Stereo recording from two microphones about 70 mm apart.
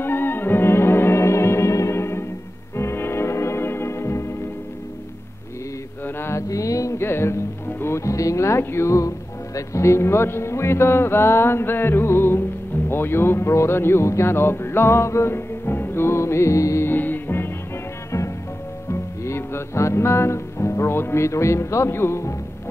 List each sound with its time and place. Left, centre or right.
0.0 s music: left
6.0 s mantra: left
6.5 s a sound: left
7.0 s music: left
9.6 s speech: left
16.8 s music: left
18.9 s music: left